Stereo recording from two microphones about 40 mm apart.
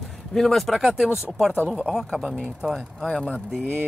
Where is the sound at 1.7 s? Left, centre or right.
Centre.